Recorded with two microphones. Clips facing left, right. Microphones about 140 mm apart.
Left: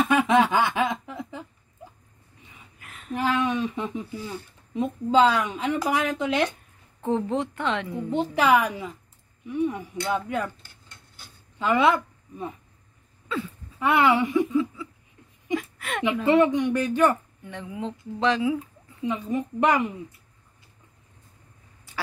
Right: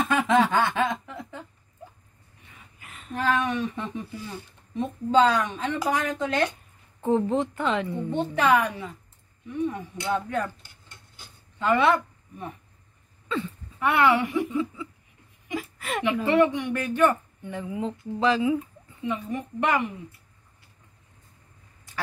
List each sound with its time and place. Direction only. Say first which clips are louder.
0.1 s snicker: right 1 dB; 10° left (ahead or behind)
2.8 s a sound: left 4 dB; centre (ahead or behind)
3.2 s a sound: left 1 dB; 15° left (ahead or behind)
4.7 s speech: left 1 dB; 10° left (ahead or behind)
7.0 s a woman's voice: right 2 dB; centre (ahead or behind)
11.7 s speech: left 1 dB; 10° left (ahead or behind)
13.3 s speech: right 1 dB; 5° left (ahead or behind)
13.7 s speech: left 1 dB; 20° left (ahead or behind)
14.5 s a sound: left 3 dB; centre (ahead or behind)
16.3 s speech: left 3 dB; 20° left (ahead or behind)
17.5 s a woman's voice: right 3 dB; 5° right (ahead or behind)
19.0 s speech: left 3 dB; 15° left (ahead or behind)